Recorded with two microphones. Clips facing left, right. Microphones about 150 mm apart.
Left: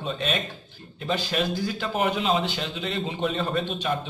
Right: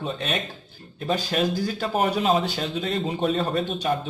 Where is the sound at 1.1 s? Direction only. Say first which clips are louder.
Right 2 dB; 40° right (ahead or behind).